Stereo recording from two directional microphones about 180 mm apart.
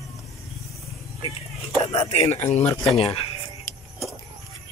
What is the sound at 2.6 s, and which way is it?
Speech, 20° left (ahead or behind).